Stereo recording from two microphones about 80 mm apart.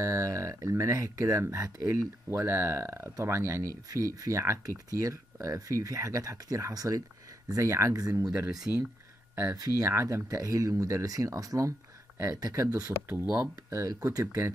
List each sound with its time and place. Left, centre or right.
0.0 s speech: right
2.2 s speech: right
7.9 s speech: right
8.6 s speech: right
9.3 s speech: right
9.6 s speech: right
13.2 s speech: right
13.7 s speech: right